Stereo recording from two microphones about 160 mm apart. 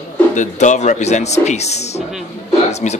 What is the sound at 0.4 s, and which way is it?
Speech, 50° left (ahead or behind).